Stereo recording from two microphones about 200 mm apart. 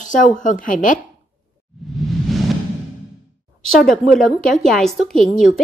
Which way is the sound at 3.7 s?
Centre (ahead or behind).